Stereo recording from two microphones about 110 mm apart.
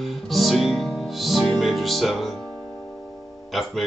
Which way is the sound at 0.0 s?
Centre (ahead or behind).